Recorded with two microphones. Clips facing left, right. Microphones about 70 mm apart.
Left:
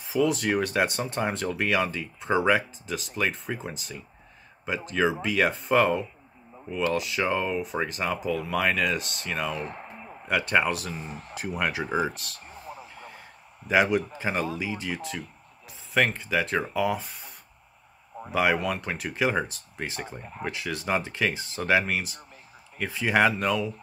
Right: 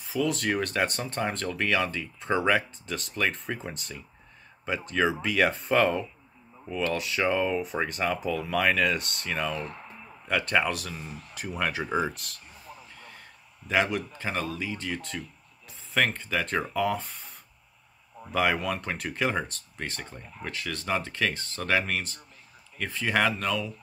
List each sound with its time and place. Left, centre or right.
0.1 s speech: centre
9.5 s speech: left
10.2 s speech: centre
11.1 s speech: left
11.3 s speech: centre
12.6 s a sound: centre
13.7 s speech: centre
18.3 s speech: centre